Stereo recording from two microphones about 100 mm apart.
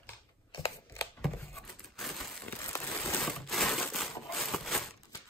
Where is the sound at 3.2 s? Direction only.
5° left (ahead or behind).